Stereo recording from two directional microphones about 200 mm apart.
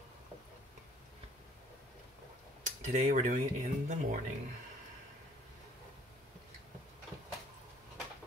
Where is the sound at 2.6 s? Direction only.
40° right (ahead or behind).